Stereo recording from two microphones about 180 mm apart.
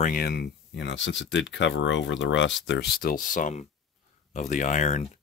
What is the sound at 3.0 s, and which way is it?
Speech, 50° left (ahead or behind).